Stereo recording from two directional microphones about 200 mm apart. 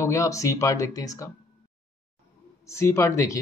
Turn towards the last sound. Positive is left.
turn(degrees=15)  # may be behind; listen again after turning